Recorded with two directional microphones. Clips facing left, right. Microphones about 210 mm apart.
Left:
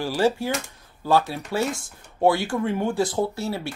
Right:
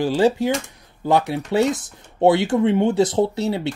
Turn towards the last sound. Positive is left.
turn(degrees=-20)  # may be behind; listen again after turning